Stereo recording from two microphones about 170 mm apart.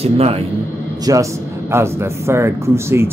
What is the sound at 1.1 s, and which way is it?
Speech, 20° right (ahead or behind).